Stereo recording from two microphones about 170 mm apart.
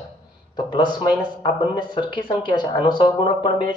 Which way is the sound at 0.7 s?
30° left (ahead or behind).